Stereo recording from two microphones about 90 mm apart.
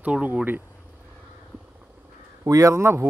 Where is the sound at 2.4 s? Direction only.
40° right (ahead or behind).